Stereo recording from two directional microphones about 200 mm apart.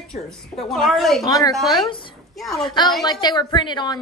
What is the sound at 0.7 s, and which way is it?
Speech, centre (ahead or behind).